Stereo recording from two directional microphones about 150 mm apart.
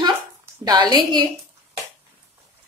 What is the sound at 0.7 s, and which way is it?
Speech, 30° right (ahead or behind).